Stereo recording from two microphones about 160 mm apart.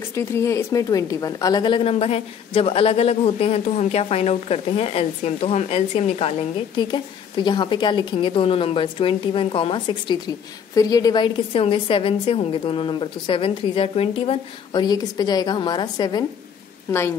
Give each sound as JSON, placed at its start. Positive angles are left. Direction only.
{"t": 0.1, "sound": "speech", "side_deg": 15}
{"t": 6.8, "sound": "a woman's voice", "side_deg": 30}